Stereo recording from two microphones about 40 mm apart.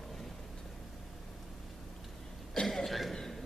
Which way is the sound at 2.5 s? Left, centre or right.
Centre.